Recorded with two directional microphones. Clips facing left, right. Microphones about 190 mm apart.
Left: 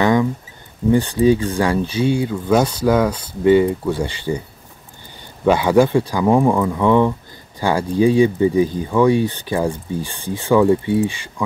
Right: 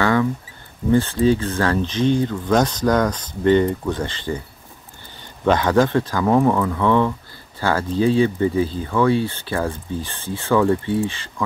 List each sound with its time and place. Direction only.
0.0 s a sound: 15° left (ahead or behind)
0.9 s speech: 15° left (ahead or behind)
5.4 s speech: 10° left (ahead or behind)